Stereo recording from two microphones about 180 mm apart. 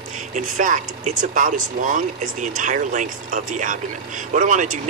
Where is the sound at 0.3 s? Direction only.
45° right (ahead or behind).